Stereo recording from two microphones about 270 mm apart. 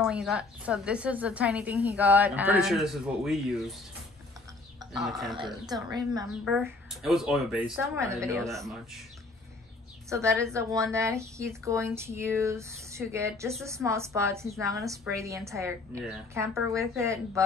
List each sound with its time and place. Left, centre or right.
0.0 s a woman's voice: centre
5.3 s a woman's voice: centre
6.4 s a woman's voice: centre
8.5 s a woman's voice: centre
10.0 s a woman's voice: centre